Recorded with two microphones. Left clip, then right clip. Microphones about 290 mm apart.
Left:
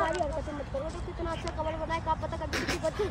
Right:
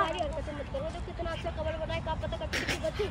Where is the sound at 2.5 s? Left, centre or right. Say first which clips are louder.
Even; left.